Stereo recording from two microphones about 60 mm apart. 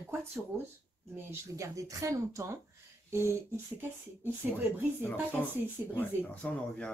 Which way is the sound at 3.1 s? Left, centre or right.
Right.